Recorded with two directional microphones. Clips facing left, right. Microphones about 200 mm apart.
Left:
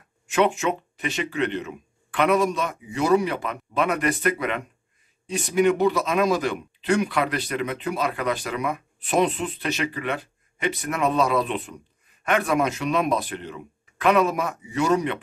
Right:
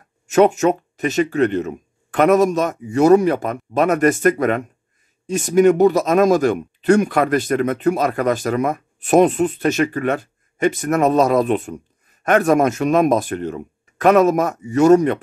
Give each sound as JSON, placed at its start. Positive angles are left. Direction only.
{"t": 0.3, "sound": "speech", "side_deg": -45}